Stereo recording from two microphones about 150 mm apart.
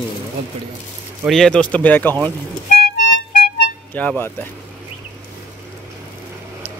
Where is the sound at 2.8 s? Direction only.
70° left (ahead or behind).